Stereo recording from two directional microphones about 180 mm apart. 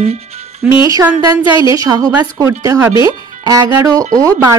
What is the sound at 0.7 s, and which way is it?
A woman's voice, 15° right (ahead or behind).